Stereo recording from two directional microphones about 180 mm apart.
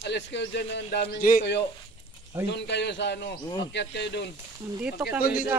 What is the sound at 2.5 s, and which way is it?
A man's voice, 70° left (ahead or behind).